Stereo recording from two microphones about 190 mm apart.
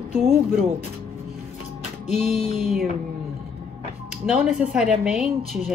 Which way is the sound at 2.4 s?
35° left (ahead or behind).